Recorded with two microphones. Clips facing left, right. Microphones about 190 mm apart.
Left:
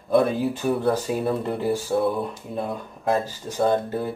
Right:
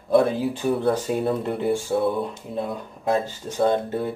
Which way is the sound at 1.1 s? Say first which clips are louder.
Right 1 dB; centre (ahead or behind).